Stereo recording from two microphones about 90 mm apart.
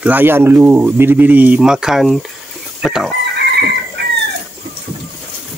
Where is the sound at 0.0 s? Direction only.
20° right (ahead or behind); by 3.2 s 5° right (ahead or behind).